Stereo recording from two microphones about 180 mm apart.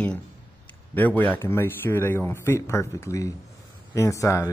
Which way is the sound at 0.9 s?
10° left (ahead or behind).